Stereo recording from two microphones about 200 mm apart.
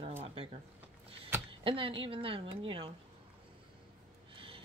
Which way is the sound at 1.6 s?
25° right (ahead or behind).